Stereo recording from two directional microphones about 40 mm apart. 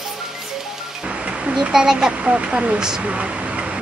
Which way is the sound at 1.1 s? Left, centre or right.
Right.